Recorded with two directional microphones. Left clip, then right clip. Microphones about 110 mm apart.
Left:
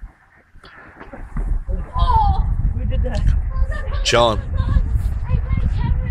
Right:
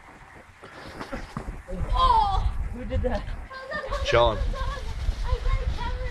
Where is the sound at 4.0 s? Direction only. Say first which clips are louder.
Left 6 dB; 30° left (ahead or behind).